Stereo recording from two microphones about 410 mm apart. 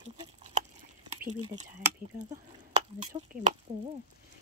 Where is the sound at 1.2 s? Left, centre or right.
Centre.